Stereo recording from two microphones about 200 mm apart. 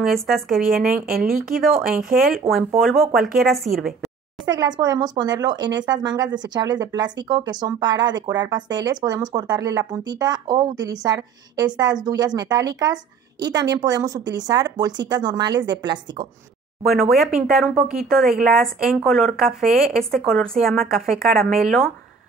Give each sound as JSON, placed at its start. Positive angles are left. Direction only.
{"t": 0.0, "sound": "speech", "side_deg": 0}
{"t": 1.1, "sound": "speech", "side_deg": -45}
{"t": 1.6, "sound": "speech", "side_deg": 0}
{"t": 4.6, "sound": "speech", "side_deg": -20}
{"t": 16.8, "sound": "speech", "side_deg": 0}